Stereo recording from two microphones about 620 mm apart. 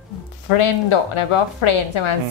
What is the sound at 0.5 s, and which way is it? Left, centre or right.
A woman's voice, left.